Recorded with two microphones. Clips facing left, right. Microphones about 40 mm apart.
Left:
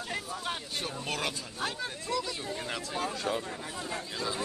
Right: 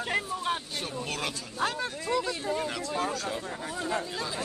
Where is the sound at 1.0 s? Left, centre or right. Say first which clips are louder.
Left 1 dB; centre.